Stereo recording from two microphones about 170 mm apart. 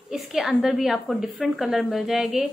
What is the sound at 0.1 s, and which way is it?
A woman's voice, centre (ahead or behind).